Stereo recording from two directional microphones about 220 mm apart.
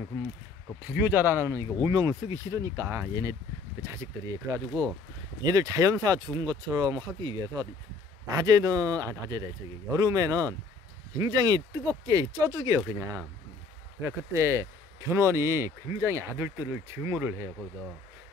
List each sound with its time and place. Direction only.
0.8 s speech: 10° right (ahead or behind)